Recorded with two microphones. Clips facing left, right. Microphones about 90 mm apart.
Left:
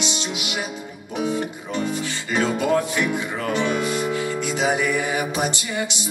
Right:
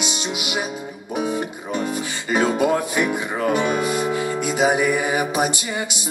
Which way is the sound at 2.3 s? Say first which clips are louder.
Right 2 dB; 10° right (ahead or behind).